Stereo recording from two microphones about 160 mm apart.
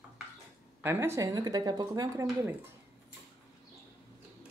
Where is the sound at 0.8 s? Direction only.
15° right (ahead or behind).